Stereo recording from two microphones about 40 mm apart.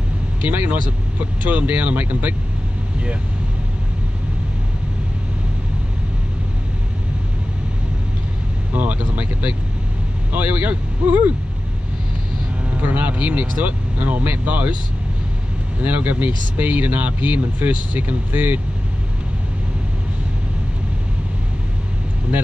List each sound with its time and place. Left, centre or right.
0.5 s speech: right
8.7 s speech: right
12.7 s speech: right
15.8 s speech: right